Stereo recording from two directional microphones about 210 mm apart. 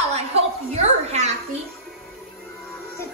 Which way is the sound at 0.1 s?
30° right (ahead or behind).